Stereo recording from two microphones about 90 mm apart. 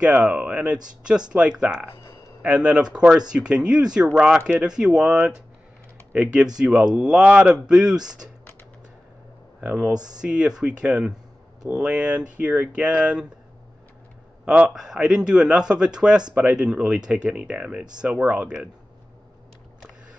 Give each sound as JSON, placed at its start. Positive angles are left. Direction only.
{"t": 0.0, "sound": "speech", "side_deg": -10}
{"t": 9.6, "sound": "speech", "side_deg": -15}
{"t": 14.4, "sound": "a man's voice", "side_deg": -15}